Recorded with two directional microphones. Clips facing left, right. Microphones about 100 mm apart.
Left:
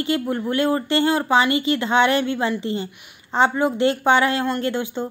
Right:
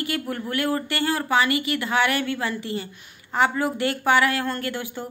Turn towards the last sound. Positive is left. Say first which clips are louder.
# left 6 dB
turn(degrees=20)  # may be behind; listen again after turning